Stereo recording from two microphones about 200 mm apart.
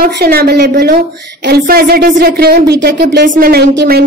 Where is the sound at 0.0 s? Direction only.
50° right (ahead or behind).